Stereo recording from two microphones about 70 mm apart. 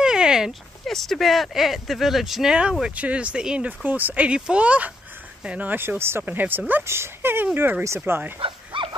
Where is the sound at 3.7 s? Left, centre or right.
Right.